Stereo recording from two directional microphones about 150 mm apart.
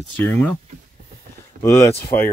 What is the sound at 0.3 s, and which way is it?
Speech, 10° left (ahead or behind).